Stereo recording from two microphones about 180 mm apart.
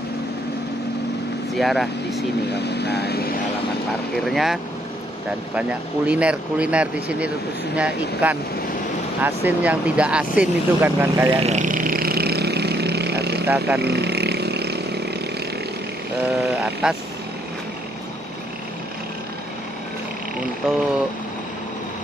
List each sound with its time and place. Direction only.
1.5 s speech: centre (ahead or behind)
2.5 s speech: 65° left (ahead or behind)
4.2 s speech: centre (ahead or behind)
5.6 s speech: 5° right (ahead or behind)
11.3 s vehicle: 40° right (ahead or behind); by 15.0 s 65° right (ahead or behind)
16.2 s speech: 10° right (ahead or behind)
20.6 s speech: 5° right (ahead or behind)